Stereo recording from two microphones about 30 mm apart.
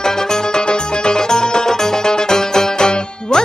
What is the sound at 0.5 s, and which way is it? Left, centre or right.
Music, left.